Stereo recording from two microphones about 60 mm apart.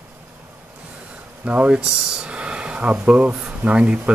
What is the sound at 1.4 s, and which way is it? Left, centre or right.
Speech, right.